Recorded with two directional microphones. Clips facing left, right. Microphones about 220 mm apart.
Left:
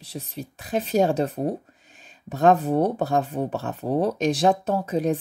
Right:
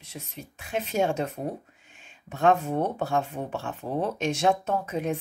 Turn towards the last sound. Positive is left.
turn(degrees=35)  # may be behind; listen again after turning